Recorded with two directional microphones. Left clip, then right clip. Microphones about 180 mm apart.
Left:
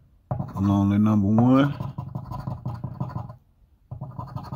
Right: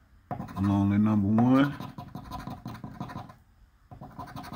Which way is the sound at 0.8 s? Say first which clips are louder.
Left 4 dB; 40° left (ahead or behind).